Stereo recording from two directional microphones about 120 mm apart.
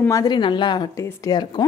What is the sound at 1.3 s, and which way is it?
Speech, 35° left (ahead or behind).